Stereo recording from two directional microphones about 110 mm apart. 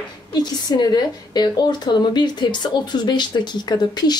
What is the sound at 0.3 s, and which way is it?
A woman's voice, 40° left (ahead or behind).